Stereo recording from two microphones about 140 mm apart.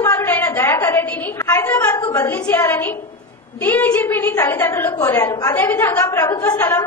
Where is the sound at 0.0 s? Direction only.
20° left (ahead or behind).